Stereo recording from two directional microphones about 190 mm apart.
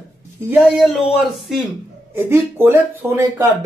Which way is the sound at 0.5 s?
Centre (ahead or behind).